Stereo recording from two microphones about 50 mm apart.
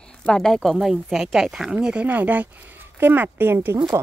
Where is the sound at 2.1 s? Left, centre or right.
Right.